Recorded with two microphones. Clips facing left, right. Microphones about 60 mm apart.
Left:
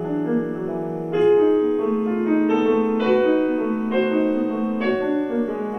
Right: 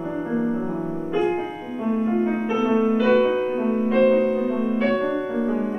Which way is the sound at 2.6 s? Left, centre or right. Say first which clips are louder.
Left 1 dB; centre.